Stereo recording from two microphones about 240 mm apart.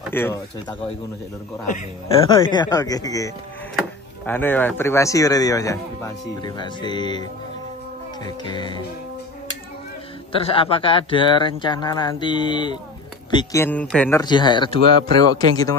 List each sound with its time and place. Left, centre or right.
0.1 s speech: centre
1.7 s speech: left
4.3 s speech: centre
8.5 s speech: centre
10.3 s speech: left; by 14.2 s centre
14.2 s speech: centre